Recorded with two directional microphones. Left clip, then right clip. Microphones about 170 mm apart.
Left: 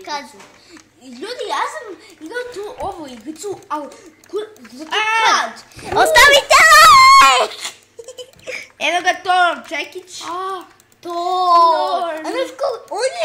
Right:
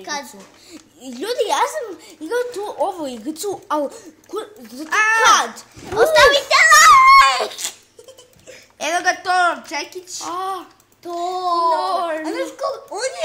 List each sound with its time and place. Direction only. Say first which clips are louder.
1.0 s a woman's voice: right 5 dB; 55° right (ahead or behind)
4.8 s a woman's voice: right 2 dB; 10° left (ahead or behind)
5.3 s a woman's voice: right 2 dB; 55° right (ahead or behind)
5.9 s a sound: left 3 dB; 15° left (ahead or behind)
8.5 s a sound: left 13 dB; 45° left (ahead or behind)
8.8 s a woman's voice: left 2 dB; 5° left (ahead or behind)
10.3 s a woman's voice: left 1 dB; 55° right (ahead or behind)
11.1 s a child's voice: left 6 dB; 40° left (ahead or behind)
11.9 s speech: left 1 dB; 50° right (ahead or behind)
12.3 s a child's voice: left 3 dB; 35° left (ahead or behind)